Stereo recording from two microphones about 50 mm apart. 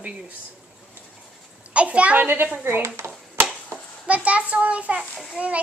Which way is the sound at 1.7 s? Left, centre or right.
Right.